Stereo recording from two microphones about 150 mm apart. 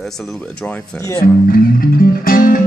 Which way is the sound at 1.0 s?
20° left (ahead or behind).